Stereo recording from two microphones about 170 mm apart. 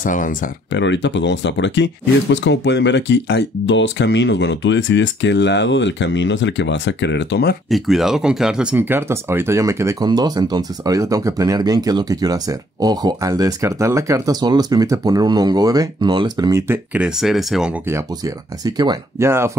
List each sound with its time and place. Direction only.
0.0 s speech: 50° left (ahead or behind)
0.7 s speech: 90° left
7.7 s speech: centre (ahead or behind)
17.8 s speech: 20° right (ahead or behind)